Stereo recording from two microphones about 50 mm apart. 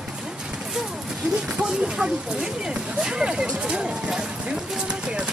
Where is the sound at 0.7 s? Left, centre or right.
Centre.